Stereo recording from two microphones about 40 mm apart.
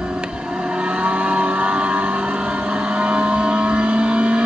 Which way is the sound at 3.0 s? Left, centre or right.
Right.